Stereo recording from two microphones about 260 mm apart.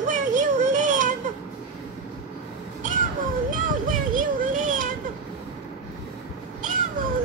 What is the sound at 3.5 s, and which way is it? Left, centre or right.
Children playing, right.